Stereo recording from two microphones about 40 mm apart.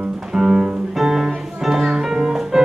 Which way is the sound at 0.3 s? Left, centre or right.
Centre.